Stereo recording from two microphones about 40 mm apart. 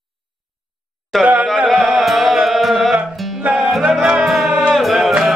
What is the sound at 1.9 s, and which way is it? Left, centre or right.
Music, centre.